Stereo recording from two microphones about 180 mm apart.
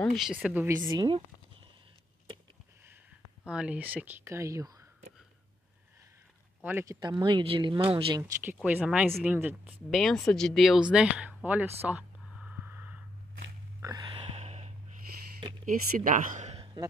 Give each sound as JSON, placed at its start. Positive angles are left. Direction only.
{"t": 0.0, "sound": "speech", "side_deg": 0}
{"t": 0.8, "sound": "speech", "side_deg": -20}
{"t": 3.4, "sound": "speech", "side_deg": -5}
{"t": 6.6, "sound": "speech", "side_deg": -15}
{"t": 8.2, "sound": "speech", "side_deg": -10}
{"t": 12.4, "sound": "a sound", "side_deg": -10}
{"t": 13.7, "sound": "a sound", "side_deg": -20}
{"t": 15.6, "sound": "speech", "side_deg": -45}